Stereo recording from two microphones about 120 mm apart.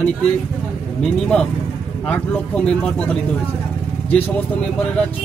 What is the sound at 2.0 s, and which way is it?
A man's voice, 10° left (ahead or behind).